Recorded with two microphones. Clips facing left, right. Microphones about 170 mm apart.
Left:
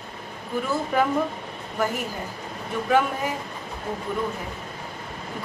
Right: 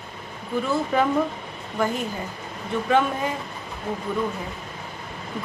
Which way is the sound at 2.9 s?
10° left (ahead or behind).